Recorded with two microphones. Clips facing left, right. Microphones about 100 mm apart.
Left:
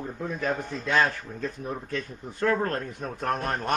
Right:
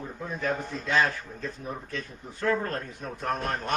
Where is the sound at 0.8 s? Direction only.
55° left (ahead or behind).